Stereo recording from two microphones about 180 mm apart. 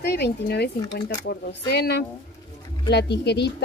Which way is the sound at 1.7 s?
60° left (ahead or behind).